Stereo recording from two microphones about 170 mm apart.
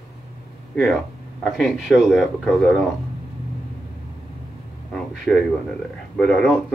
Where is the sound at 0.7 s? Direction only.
Centre (ahead or behind).